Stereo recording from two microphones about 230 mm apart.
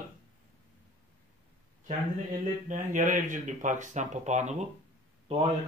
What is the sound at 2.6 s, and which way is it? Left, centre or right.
Speech, right.